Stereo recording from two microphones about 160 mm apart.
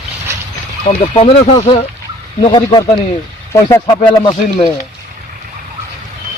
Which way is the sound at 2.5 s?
25° left (ahead or behind).